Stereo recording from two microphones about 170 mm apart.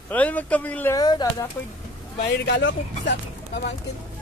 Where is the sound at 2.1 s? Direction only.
85° left.